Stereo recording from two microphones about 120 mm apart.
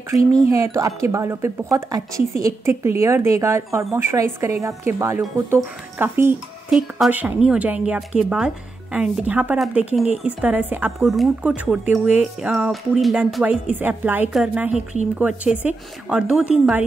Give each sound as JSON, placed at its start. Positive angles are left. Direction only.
{"t": 0.4, "sound": "a woman's voice", "side_deg": -25}
{"t": 6.7, "sound": "speech", "side_deg": 0}
{"t": 7.1, "sound": "speech", "side_deg": -15}
{"t": 11.0, "sound": "speech", "side_deg": 0}